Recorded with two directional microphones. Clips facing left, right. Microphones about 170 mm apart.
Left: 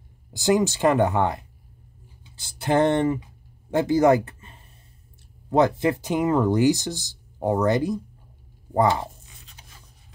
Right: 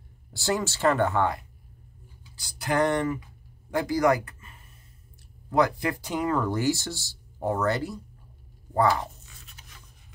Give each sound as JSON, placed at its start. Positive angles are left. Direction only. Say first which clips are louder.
{"t": 0.3, "sound": "speech", "louder": "left 7 dB", "side_deg": 15}
{"t": 3.7, "sound": "a sound", "louder": "left 5 dB", "side_deg": 25}
{"t": 5.5, "sound": "speech", "louder": "left 4 dB", "side_deg": 25}